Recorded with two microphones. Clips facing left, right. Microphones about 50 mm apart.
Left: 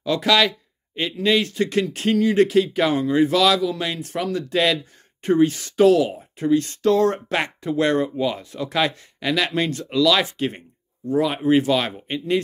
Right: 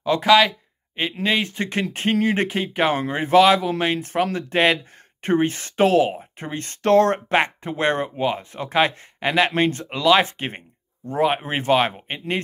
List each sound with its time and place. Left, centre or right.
0.0 s speech: centre; by 7.2 s right
7.2 s speech: right